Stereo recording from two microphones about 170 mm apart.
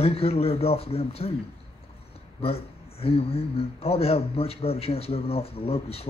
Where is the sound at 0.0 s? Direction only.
35° left (ahead or behind).